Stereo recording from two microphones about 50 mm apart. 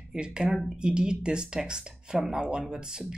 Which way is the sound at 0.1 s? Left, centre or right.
Centre.